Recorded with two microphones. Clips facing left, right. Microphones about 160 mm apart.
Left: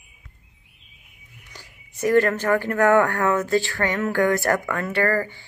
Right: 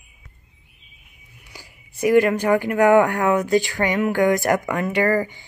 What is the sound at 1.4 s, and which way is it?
Speech, 10° right (ahead or behind).